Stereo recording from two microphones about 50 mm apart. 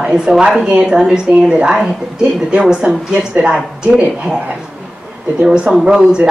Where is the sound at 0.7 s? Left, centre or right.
Right.